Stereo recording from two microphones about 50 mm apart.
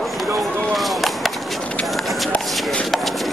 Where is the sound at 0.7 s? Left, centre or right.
Centre.